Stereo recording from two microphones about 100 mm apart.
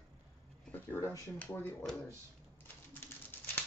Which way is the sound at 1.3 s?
20° left (ahead or behind).